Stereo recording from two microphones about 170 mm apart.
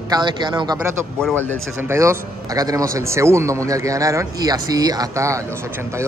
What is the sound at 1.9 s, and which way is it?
A man's voice, 15° right (ahead or behind).